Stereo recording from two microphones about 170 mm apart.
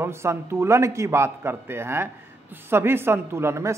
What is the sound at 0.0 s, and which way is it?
Speech, 15° right (ahead or behind).